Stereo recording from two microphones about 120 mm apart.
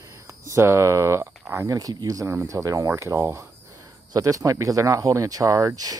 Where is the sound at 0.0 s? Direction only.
25° right (ahead or behind).